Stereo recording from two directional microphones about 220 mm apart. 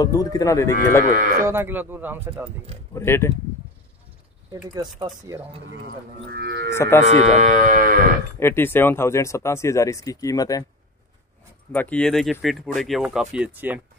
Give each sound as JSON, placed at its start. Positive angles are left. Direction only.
{"t": 0.0, "sound": "speech", "side_deg": 15}
{"t": 1.4, "sound": "speech", "side_deg": -10}
{"t": 2.9, "sound": "speech", "side_deg": 10}
{"t": 4.7, "sound": "speech", "side_deg": -20}
{"t": 5.7, "sound": "speech", "side_deg": -50}
{"t": 6.7, "sound": "speech", "side_deg": 10}
{"t": 7.1, "sound": "speech", "side_deg": -30}
{"t": 8.4, "sound": "speech", "side_deg": 10}
{"t": 11.7, "sound": "speech", "side_deg": 5}